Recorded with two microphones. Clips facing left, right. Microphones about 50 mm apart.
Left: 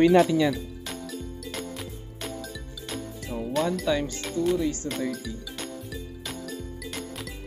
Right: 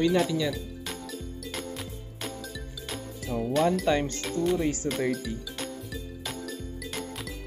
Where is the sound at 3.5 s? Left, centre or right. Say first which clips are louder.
Right 1 dB; centre.